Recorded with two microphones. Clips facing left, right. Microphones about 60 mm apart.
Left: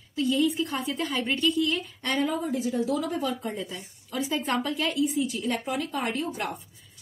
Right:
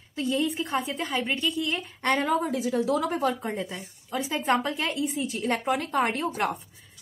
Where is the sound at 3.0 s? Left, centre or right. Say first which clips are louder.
Right 3 dB; right.